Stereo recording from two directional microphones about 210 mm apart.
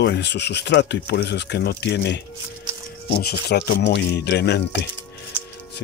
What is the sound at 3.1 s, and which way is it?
Speech, 50° left (ahead or behind).